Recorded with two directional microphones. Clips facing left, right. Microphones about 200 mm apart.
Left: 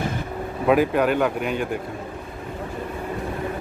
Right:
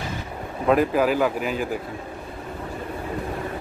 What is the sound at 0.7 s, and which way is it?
Speech, centre (ahead or behind).